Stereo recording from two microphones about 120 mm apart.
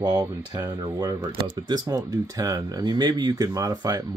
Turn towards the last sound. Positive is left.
turn(degrees=-30)  # may be behind; listen again after turning